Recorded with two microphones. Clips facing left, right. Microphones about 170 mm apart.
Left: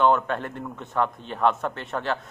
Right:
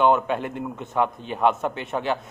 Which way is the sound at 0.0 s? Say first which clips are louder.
Right 1 dB; 10° right (ahead or behind).